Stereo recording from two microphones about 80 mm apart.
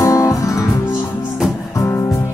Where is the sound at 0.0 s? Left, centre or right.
Left.